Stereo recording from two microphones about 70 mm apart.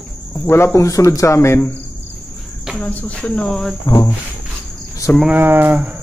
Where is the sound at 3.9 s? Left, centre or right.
Left.